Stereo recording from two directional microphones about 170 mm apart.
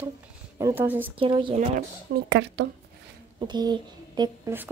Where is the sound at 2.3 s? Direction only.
90° right.